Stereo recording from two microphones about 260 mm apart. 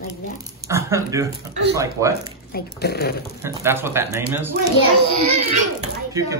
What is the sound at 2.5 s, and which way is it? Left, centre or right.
Speech, left.